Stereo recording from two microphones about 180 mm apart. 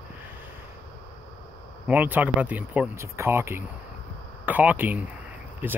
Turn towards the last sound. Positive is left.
turn(degrees=-10)  # may be behind; listen again after turning